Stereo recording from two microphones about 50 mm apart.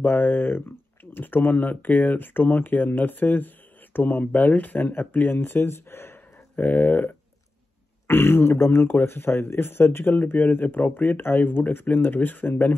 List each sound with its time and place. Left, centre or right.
0.0 s speech: left
6.5 s speech: left
8.1 s speech: left